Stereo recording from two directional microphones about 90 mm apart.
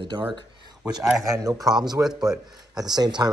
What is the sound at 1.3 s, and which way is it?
Speech, 40° right (ahead or behind).